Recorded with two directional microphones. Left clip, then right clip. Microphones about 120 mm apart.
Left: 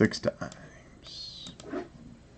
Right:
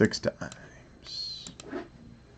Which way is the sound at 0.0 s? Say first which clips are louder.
Right 1 dB; 20° right (ahead or behind).